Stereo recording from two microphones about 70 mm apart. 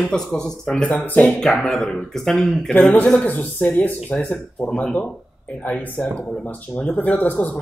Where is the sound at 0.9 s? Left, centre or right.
Centre.